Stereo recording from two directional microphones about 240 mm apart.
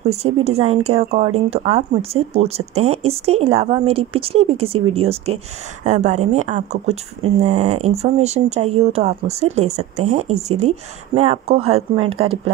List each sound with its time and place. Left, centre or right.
0.0 s speech: right